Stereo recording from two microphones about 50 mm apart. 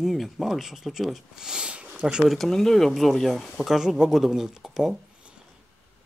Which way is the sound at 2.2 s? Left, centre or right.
Centre.